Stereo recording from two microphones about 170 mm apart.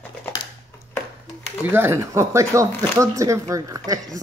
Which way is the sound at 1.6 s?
15° right (ahead or behind).